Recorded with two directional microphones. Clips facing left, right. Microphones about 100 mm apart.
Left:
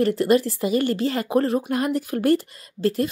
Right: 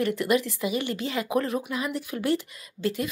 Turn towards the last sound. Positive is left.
turn(degrees=35)  # may be behind; listen again after turning